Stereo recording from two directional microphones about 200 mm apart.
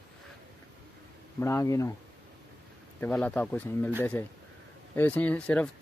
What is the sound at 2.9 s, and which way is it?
Speech, 10° left (ahead or behind).